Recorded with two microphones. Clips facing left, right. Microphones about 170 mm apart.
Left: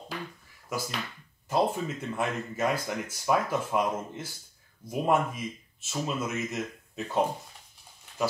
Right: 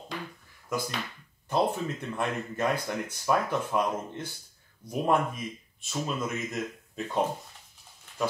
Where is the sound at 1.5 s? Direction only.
5° left (ahead or behind).